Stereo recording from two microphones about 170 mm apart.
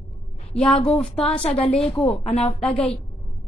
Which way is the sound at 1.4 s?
35° left (ahead or behind).